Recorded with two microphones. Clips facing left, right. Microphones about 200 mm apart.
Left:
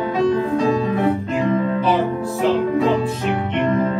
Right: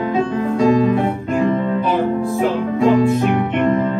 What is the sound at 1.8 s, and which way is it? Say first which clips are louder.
Music: right 1 dB; 50° right (ahead or behind).